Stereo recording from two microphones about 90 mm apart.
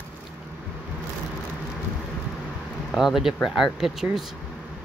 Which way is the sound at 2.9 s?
5° right (ahead or behind).